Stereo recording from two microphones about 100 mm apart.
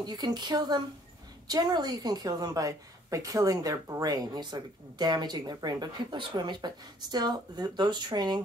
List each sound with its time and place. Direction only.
0.0 s a woman's voice: 45° right (ahead or behind)